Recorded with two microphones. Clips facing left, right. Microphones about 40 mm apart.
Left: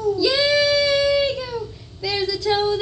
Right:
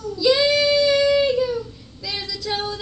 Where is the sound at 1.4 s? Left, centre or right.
Centre.